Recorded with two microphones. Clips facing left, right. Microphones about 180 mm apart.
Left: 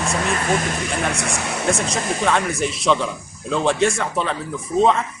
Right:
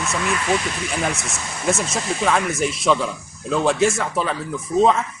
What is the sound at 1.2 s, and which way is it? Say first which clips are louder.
Speech: left 6 dB; 65° left (ahead or behind).